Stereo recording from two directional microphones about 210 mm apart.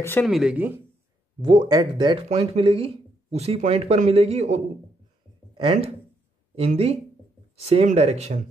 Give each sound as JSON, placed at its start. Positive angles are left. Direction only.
{"t": 0.2, "sound": "speech", "side_deg": 0}
{"t": 1.4, "sound": "speech", "side_deg": -25}